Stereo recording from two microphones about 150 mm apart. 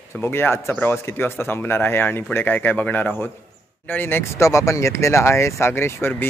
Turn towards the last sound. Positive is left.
turn(degrees=15)  # may be behind; listen again after turning